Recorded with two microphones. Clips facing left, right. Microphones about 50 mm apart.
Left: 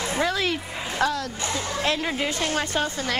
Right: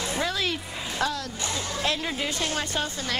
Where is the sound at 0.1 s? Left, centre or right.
Left.